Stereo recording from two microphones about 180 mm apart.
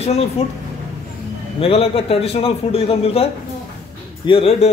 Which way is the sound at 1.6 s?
30° left (ahead or behind).